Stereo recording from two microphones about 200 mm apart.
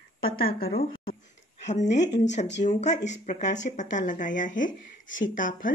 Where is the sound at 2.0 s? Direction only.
60° left (ahead or behind).